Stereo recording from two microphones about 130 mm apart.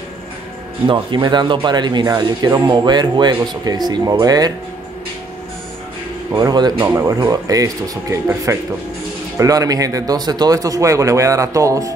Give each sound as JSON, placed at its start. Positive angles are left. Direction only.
{"t": 0.8, "sound": "speech", "side_deg": -40}
{"t": 6.3, "sound": "speech", "side_deg": -35}